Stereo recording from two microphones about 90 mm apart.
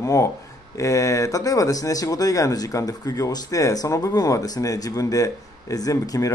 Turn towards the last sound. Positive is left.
turn(degrees=40)  # may be behind; listen again after turning